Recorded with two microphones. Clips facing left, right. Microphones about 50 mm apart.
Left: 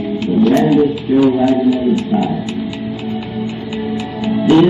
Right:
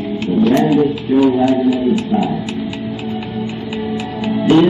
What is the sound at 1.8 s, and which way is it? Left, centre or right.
Music, centre.